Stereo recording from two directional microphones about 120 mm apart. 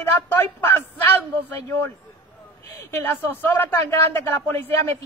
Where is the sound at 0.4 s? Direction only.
15° left (ahead or behind).